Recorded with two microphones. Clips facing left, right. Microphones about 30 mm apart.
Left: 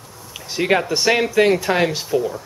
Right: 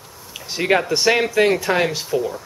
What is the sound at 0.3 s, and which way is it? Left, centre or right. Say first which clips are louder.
Speech: even; centre.